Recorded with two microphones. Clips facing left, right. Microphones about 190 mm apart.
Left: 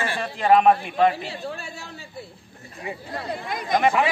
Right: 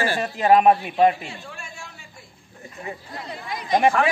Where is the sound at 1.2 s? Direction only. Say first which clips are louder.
Left 6 dB; 35° left (ahead or behind).